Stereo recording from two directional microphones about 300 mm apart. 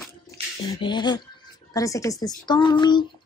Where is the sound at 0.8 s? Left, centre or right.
Centre.